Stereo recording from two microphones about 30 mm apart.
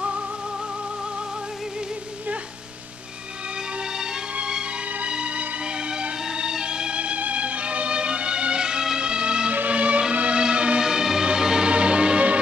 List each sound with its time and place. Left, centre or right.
3.9 s music: right
5.0 s music: right
7.3 s music: right
9.7 s music: right
10.3 s music: right
10.8 s music: centre
11.7 s music: right